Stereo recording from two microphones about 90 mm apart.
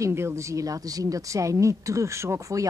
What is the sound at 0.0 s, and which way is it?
Speech, 30° right (ahead or behind).